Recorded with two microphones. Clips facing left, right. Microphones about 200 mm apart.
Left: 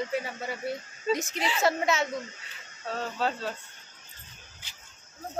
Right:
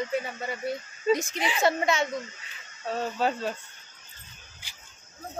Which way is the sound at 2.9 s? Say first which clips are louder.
Right 3 dB; 15° right (ahead or behind).